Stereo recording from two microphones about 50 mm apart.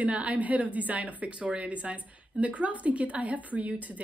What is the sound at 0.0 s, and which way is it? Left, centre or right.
Speech, right.